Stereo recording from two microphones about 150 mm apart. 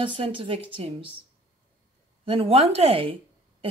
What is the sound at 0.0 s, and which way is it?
Speech, 35° right (ahead or behind).